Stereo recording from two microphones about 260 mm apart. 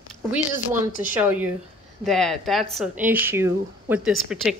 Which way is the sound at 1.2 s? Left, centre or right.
Centre.